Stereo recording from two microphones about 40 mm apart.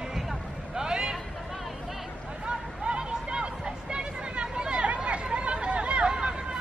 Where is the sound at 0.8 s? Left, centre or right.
Centre.